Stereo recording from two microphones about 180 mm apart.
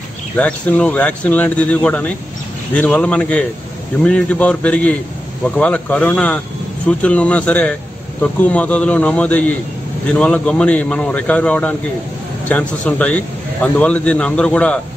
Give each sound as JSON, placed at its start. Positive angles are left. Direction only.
{"t": 0.4, "sound": "a man's voice", "side_deg": 5}